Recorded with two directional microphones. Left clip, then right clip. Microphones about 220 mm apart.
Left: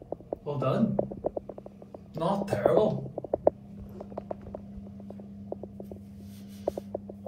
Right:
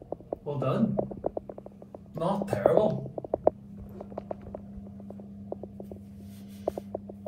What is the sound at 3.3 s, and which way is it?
Stomach rumble, 45° left (ahead or behind).